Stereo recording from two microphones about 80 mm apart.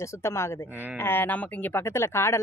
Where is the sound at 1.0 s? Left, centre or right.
Left.